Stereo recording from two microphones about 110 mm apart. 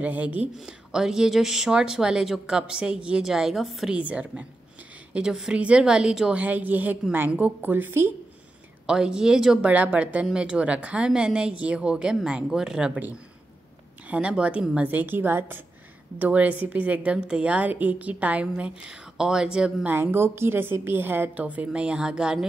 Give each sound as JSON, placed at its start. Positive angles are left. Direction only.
{"t": 0.0, "sound": "speech", "side_deg": -15}
{"t": 3.9, "sound": "speech", "side_deg": -10}
{"t": 8.8, "sound": "speech", "side_deg": -5}
{"t": 19.9, "sound": "speech", "side_deg": -20}